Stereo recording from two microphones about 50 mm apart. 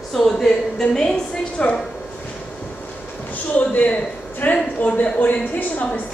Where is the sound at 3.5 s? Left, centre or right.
Left.